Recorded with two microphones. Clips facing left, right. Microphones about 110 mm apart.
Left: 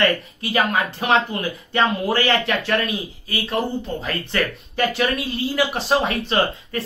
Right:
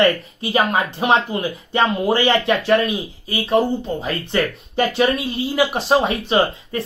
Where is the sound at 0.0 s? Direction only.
25° right (ahead or behind).